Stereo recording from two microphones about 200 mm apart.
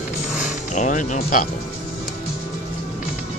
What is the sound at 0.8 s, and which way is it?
Speech, 40° left (ahead or behind).